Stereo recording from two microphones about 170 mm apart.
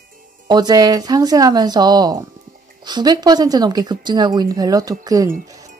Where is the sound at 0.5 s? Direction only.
25° right (ahead or behind).